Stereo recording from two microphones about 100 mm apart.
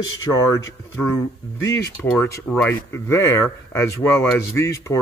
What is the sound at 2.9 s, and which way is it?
Speech, 30° left (ahead or behind).